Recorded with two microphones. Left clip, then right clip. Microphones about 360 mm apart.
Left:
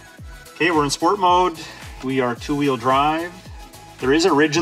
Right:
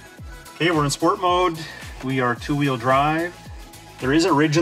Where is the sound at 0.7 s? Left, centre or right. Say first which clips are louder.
Left 1 dB; centre.